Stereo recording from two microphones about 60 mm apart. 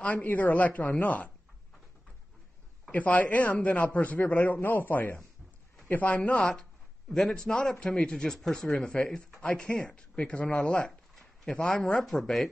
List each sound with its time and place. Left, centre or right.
0.0 s a man's voice: left
2.9 s a man's voice: left; by 7.4 s centre
7.4 s a man's voice: centre
10.9 s a sound: centre
11.5 s speech: centre
12.0 s speech: centre